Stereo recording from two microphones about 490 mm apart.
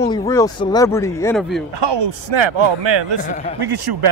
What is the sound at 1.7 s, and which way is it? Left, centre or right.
A man's voice, right.